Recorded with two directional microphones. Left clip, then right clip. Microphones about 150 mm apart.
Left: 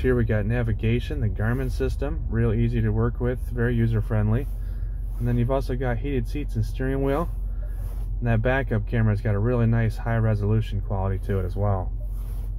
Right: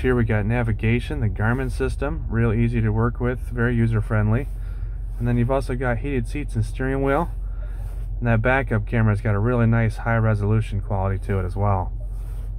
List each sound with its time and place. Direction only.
0.0 s speech: 20° right (ahead or behind)